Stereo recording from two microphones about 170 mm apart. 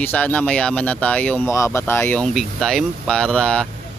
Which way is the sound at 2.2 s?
Centre (ahead or behind).